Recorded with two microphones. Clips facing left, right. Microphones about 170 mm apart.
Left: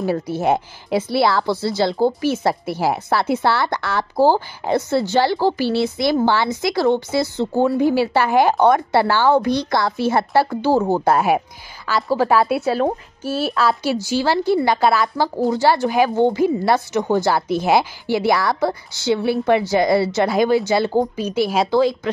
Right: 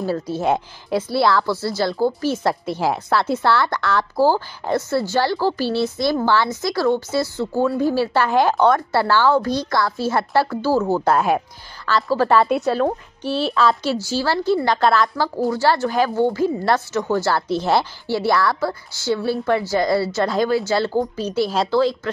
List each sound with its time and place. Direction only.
0.0 s a woman's voice: 15° left (ahead or behind)
2.3 s a woman's voice: 10° left (ahead or behind)